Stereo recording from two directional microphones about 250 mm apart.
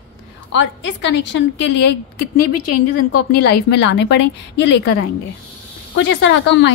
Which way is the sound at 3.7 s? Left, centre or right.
Left.